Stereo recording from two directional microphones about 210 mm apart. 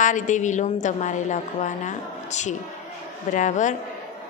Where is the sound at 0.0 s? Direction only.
35° left (ahead or behind).